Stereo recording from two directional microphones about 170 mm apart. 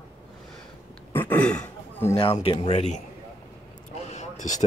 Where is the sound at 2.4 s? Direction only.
40° left (ahead or behind).